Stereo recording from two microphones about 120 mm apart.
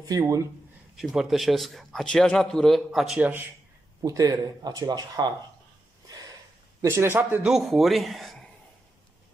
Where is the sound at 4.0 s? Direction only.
30° right (ahead or behind).